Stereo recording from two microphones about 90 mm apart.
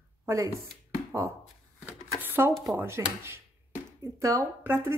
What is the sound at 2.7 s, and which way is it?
Cutlery, 25° right (ahead or behind).